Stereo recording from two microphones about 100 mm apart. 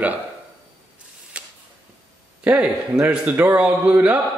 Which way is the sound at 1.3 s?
10° right (ahead or behind).